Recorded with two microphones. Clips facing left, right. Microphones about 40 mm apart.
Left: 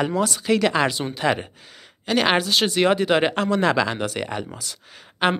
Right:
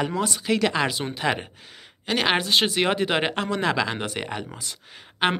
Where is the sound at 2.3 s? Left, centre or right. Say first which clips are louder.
Left 2 dB; right.